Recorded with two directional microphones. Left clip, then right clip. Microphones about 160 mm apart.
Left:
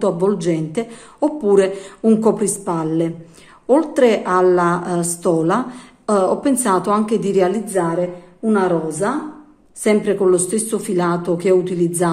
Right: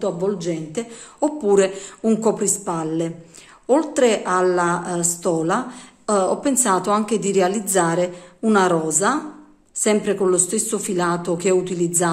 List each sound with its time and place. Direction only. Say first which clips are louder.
0.0 s a woman's voice: left 5 dB; 10° left (ahead or behind); by 7.6 s 10° right (ahead or behind)
7.7 s a woman's voice: even; 30° right (ahead or behind)
9.8 s a woman's voice: left 3 dB; 10° right (ahead or behind)